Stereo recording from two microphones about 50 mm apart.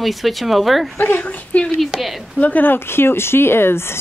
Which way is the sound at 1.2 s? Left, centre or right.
Left.